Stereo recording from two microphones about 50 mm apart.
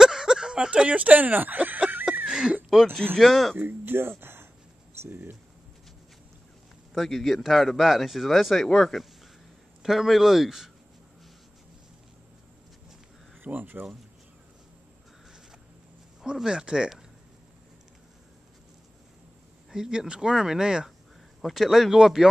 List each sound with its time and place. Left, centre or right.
0.0 s a sound: centre; by 2.0 s right
2.2 s a sound: centre
3.2 s speech: centre
3.5 s a sound: right
5.0 s speech: right
6.9 s speech: centre
13.4 s speech: right
16.2 s speech: centre
19.7 s speech: centre
21.4 s speech: centre